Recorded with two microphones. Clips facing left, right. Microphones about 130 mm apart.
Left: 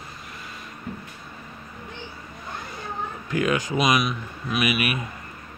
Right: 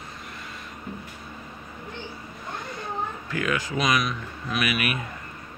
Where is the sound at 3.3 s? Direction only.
20° left (ahead or behind).